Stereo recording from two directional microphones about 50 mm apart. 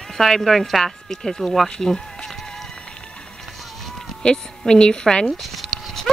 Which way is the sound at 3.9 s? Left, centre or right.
Centre.